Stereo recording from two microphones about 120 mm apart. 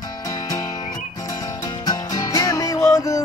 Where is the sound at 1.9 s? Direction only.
30° left (ahead or behind).